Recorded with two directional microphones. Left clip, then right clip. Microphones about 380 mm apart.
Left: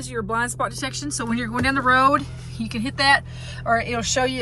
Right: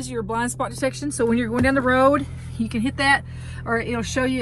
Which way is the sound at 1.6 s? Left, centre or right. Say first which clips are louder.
Left 1 dB; centre.